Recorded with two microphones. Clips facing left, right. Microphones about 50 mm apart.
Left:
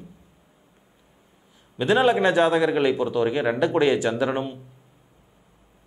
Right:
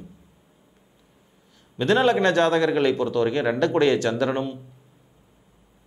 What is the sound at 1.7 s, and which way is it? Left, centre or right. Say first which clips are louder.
A man's voice: even; centre.